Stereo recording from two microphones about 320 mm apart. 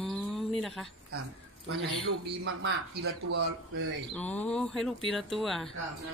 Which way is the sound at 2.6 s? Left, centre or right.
Right.